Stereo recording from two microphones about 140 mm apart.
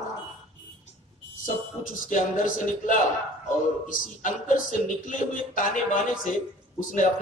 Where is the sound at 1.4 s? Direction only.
75° left (ahead or behind).